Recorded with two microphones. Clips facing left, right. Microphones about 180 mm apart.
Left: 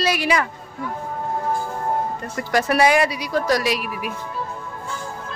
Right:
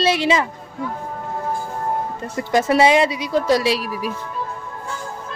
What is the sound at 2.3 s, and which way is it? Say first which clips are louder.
Speech: right 3 dB; 20° right (ahead or behind).